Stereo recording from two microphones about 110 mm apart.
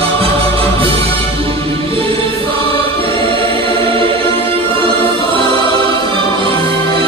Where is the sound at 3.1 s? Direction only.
50° right (ahead or behind).